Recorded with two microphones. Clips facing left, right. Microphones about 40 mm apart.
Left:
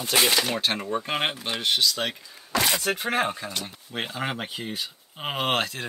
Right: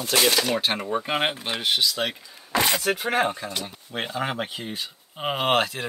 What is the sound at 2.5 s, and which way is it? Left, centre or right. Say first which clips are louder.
Speech: right 2 dB; centre.